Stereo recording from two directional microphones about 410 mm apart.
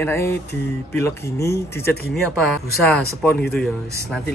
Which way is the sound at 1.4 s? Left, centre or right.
Centre.